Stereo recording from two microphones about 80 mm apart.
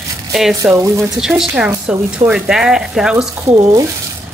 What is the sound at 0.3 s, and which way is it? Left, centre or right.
Speech, centre.